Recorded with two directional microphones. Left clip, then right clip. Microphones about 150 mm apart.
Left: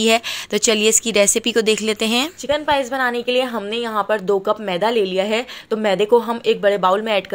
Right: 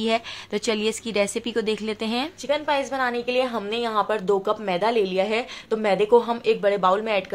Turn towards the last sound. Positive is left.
turn(degrees=30)  # may be behind; listen again after turning